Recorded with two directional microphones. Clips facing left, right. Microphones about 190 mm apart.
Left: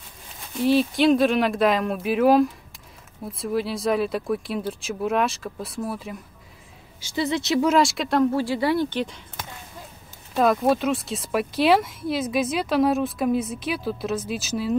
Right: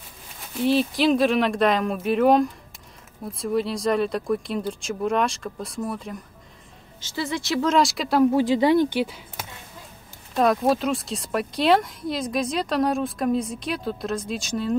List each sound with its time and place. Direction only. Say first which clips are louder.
0.6 s speech: left 1 dB; centre (ahead or behind)
7.0 s speech: left 3 dB; 15° left (ahead or behind)
7.6 s speech: right 1 dB; centre (ahead or behind)
8.3 s speech: right 4 dB; 15° right (ahead or behind); by 14.8 s 5° left (ahead or behind)